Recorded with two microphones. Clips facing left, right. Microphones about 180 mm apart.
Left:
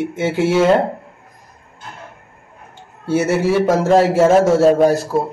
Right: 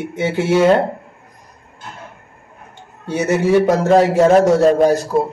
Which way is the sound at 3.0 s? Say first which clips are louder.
Left 1 dB; 15° right (ahead or behind).